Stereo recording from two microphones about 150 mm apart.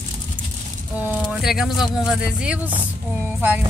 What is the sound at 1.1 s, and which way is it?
Speech, centre (ahead or behind).